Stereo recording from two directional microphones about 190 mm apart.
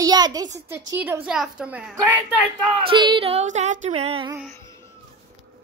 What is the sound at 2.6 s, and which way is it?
Female singing, 25° right (ahead or behind).